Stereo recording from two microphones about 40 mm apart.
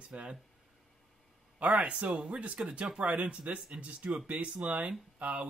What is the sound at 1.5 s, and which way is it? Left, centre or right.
Speech, right.